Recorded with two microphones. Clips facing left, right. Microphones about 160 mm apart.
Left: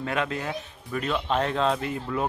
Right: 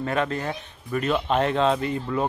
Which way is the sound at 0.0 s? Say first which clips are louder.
Right 3 dB; centre (ahead or behind).